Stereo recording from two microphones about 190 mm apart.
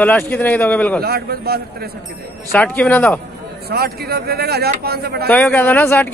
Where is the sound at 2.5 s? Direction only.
5° left (ahead or behind).